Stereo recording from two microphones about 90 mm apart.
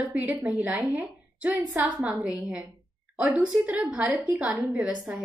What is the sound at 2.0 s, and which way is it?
A woman's voice, 10° right (ahead or behind).